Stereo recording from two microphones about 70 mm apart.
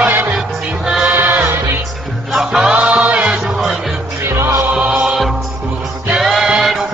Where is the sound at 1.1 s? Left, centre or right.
Right.